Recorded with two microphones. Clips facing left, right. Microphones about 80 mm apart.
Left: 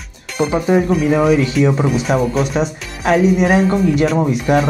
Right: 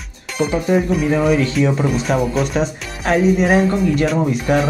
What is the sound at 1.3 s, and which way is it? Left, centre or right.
Speech, centre.